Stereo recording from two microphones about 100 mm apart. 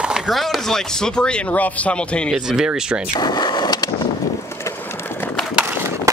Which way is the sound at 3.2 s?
45° left (ahead or behind).